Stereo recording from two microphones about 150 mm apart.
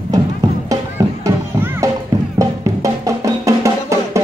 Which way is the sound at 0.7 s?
20° right (ahead or behind).